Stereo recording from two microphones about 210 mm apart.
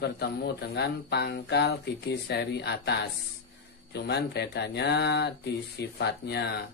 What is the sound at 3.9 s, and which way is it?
Speech, 50° left (ahead or behind).